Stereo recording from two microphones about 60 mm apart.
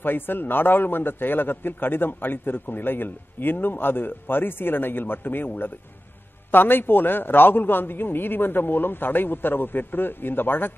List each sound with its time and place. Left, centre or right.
0.0 s a man's voice: left